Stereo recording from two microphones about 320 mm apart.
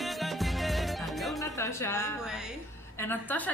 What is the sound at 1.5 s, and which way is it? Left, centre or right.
A woman's voice, centre.